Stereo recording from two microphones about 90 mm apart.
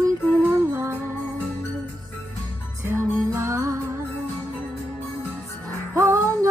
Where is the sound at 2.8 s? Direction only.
30° right (ahead or behind).